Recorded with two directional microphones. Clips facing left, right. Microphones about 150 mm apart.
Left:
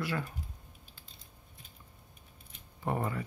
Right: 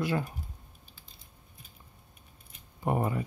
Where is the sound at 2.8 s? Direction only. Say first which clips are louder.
Right 4 dB; 20° right (ahead or behind).